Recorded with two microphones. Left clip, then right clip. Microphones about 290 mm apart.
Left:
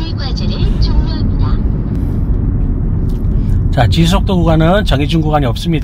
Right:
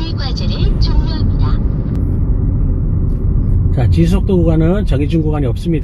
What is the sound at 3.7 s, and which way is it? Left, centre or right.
Speech, left.